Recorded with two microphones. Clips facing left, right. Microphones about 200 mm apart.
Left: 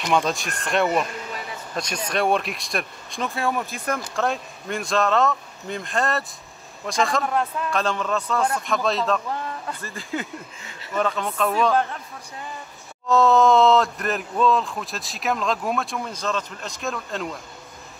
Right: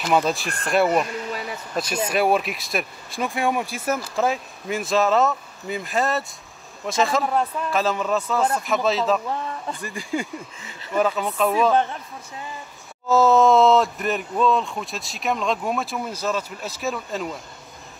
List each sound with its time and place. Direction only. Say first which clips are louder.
0.0 s speech: right 1 dB; 5° right (ahead or behind)
3.3 s speech: right 2 dB; 15° right (ahead or behind)
3.7 s speech: right 2 dB; 5° right (ahead or behind)
9.7 s speech: right 3 dB; 15° right (ahead or behind)
10.3 s speech: right 2 dB; 5° right (ahead or behind)
13.1 s speech: right 1 dB; centre (ahead or behind)